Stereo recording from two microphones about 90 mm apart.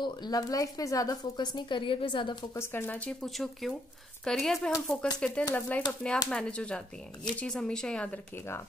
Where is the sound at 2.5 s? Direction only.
25° left (ahead or behind).